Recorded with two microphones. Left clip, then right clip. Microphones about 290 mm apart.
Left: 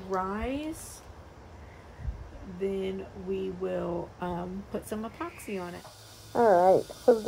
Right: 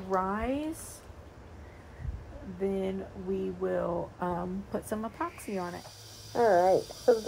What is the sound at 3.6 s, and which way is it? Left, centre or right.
Speech, centre.